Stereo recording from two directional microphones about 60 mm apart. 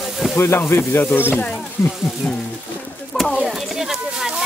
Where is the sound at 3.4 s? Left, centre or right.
Centre.